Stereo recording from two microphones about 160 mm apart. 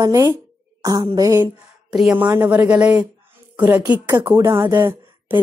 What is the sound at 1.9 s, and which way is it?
A woman's voice, 5° right (ahead or behind).